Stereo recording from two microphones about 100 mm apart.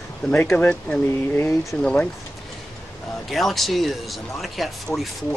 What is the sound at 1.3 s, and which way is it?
Speech, 25° left (ahead or behind).